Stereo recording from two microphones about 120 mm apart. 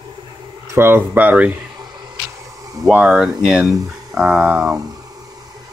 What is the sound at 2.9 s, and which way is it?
Speech, 10° right (ahead or behind).